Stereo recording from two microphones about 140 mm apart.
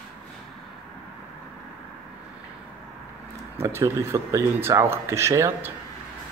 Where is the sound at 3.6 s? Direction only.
20° right (ahead or behind).